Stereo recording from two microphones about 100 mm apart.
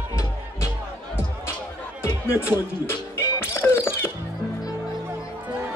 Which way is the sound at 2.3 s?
20° right (ahead or behind).